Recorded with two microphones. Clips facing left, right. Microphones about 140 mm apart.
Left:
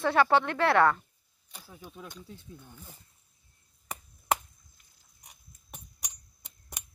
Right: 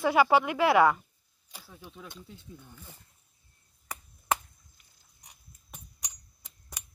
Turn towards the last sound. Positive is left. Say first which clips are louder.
# left 1 dB
turn(degrees=20)  # may be behind; listen again after turning